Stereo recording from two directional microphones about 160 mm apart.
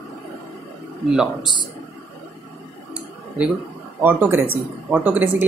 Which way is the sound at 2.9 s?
5° right (ahead or behind).